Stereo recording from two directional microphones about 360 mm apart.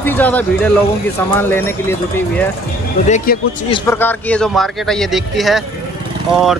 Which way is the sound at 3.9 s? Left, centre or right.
Centre.